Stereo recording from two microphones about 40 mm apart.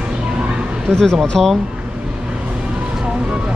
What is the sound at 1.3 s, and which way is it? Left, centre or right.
Speech, centre.